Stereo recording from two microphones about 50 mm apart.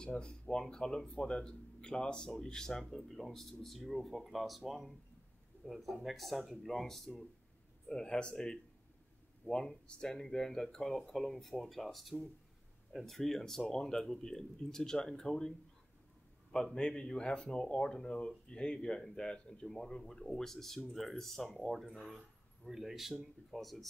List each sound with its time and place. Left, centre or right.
0.2 s speech: centre
7.9 s speech: centre
16.7 s speech: centre